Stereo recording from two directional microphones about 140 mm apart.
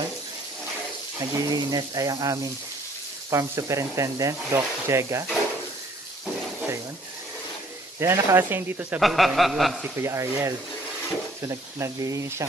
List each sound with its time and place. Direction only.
1.3 s speech: 25° right (ahead or behind)
8.0 s speech: 20° right (ahead or behind)
9.0 s speech: centre (ahead or behind)
9.9 s speech: 20° right (ahead or behind)